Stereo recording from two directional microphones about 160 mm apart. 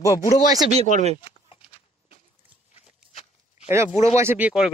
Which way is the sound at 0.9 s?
50° right (ahead or behind).